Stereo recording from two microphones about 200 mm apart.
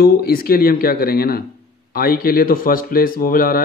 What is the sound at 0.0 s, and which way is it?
A man's voice, 50° left (ahead or behind).